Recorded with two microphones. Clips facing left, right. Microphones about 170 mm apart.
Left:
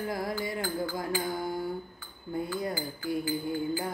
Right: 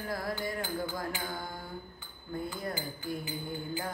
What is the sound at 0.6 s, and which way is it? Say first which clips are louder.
Music: left 3 dB; 20° right (ahead or behind).